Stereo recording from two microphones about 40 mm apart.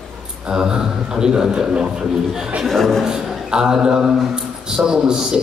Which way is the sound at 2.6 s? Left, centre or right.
Centre.